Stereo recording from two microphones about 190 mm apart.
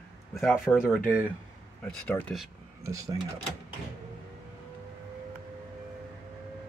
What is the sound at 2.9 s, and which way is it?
Speech, 15° right (ahead or behind).